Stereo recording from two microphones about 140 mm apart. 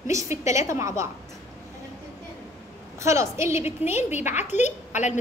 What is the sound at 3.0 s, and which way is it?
Speech, 20° right (ahead or behind).